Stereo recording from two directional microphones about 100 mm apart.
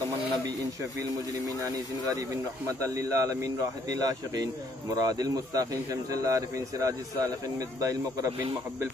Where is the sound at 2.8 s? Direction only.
35° right (ahead or behind).